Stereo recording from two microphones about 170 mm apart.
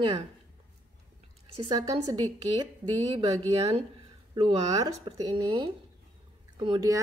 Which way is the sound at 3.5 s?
35° right (ahead or behind).